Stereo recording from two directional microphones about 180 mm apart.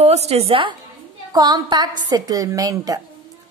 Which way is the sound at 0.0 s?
35° right (ahead or behind).